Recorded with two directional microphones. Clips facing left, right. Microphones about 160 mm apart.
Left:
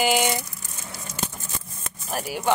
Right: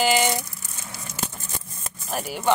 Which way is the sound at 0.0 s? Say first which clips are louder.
Right 1 dB; 10° left (ahead or behind).